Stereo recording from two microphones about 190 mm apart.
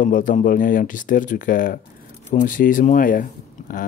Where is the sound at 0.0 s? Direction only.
45° left (ahead or behind).